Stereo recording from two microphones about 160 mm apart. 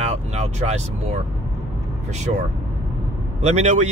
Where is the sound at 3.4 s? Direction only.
45° right (ahead or behind).